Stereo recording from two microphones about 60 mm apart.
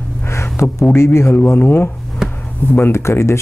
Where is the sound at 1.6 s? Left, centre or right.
Left.